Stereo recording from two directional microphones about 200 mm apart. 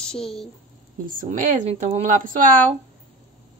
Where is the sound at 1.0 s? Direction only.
45° right (ahead or behind).